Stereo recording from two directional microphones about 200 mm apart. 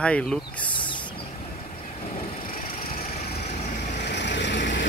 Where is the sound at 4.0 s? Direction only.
60° left (ahead or behind).